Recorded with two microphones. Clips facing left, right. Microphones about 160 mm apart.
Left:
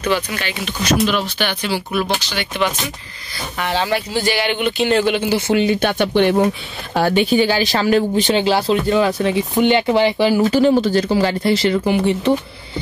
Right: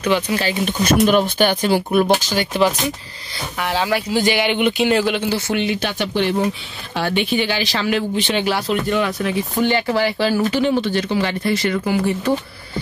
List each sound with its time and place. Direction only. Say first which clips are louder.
0.3 s speech: right 5 dB; 35° right (ahead or behind)
3.5 s speech: left 1 dB; 5° right (ahead or behind)
5.6 s speech: left 5 dB; 50° left (ahead or behind)
6.9 s speech: left 5 dB; 40° left (ahead or behind); by 10.4 s 15° left (ahead or behind)
10.5 s speech: left 4 dB; 40° left (ahead or behind); by 12.4 s 20° left (ahead or behind)